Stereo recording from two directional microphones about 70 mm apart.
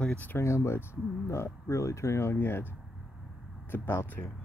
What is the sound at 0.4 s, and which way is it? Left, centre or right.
Speech, left.